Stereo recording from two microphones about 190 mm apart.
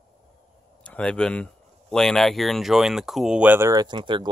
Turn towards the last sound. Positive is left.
turn(degrees=-25)  # may be behind; listen again after turning